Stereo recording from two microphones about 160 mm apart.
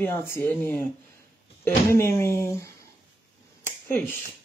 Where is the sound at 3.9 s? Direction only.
15° left (ahead or behind).